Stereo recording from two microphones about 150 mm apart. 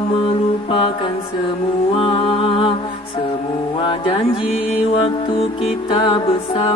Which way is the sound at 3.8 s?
35° left (ahead or behind).